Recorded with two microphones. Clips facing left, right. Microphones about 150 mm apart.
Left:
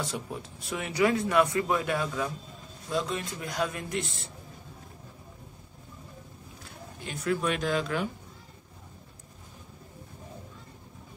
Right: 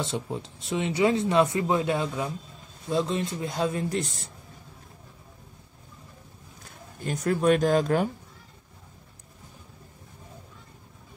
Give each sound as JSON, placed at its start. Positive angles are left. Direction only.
{"t": 0.0, "sound": "speech", "side_deg": -25}
{"t": 6.6, "sound": "speech", "side_deg": -45}